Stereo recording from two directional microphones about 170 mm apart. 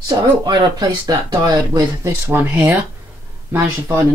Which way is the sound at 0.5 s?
25° right (ahead or behind).